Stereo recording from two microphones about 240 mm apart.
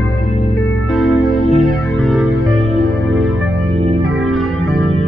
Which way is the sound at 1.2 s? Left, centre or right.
Left.